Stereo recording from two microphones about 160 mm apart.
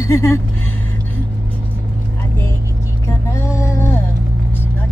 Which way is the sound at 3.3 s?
15° left (ahead or behind).